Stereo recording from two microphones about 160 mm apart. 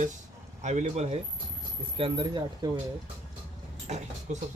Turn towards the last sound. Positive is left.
turn(degrees=-45)  # may be behind; listen again after turning